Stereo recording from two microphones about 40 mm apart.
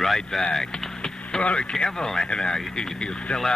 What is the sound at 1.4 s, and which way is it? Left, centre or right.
Speech, left.